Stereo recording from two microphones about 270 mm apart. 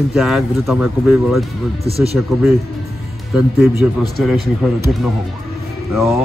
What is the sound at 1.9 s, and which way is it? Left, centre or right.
Speech, right.